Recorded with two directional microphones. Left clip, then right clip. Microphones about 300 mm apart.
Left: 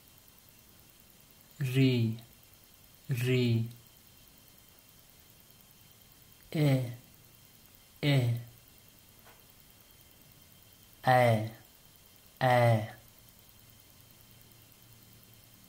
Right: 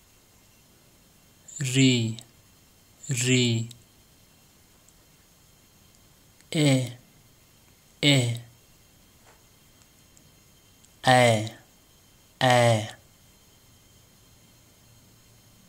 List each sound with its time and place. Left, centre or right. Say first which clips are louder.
1.6 s speech: right 7 dB; centre
6.5 s speech: right 7 dB; centre
8.0 s speech: right 10 dB; centre
11.0 s speech: right 6 dB; centre